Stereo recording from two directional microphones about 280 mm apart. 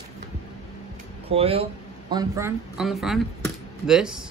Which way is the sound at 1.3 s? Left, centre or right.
Right.